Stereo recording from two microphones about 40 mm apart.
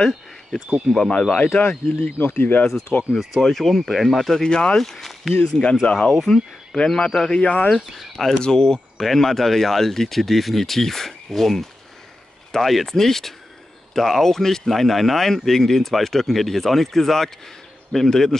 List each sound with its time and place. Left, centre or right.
0.9 s speech: centre
1.3 s speech: left
1.6 s speech: left
2.9 s speech: left
3.3 s speech: centre
4.4 s speech: left
4.7 s speech: centre
5.4 s speech: left
7.4 s speech: left
7.7 s speech: centre
8.4 s speech: centre